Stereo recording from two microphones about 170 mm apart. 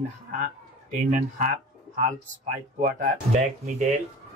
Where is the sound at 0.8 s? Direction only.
50° right (ahead or behind).